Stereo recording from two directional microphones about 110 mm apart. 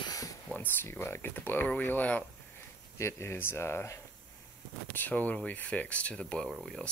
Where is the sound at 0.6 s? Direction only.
20° left (ahead or behind).